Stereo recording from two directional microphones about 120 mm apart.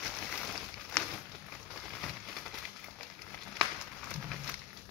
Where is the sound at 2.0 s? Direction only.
Centre (ahead or behind).